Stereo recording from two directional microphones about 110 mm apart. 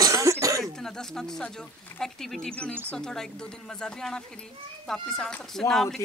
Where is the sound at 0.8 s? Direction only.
5° left (ahead or behind).